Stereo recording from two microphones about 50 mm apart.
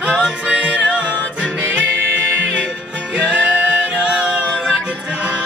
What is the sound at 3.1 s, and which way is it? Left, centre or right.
Music, right.